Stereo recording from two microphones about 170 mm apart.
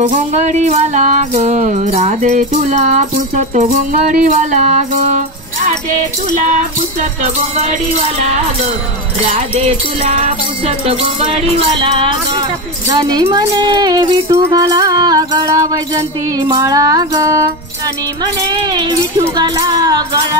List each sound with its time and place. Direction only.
0.0 s music: 40° right (ahead or behind)
6.4 s music: 45° right (ahead or behind)
9.2 s speech: 40° right (ahead or behind); by 17.5 s 20° right (ahead or behind)
18.5 s speech: 25° right (ahead or behind)